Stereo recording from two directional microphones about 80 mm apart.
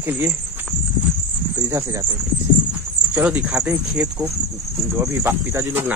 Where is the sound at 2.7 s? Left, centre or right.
Centre.